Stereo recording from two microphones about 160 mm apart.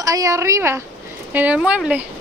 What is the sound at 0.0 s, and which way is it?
Speech, 20° right (ahead or behind).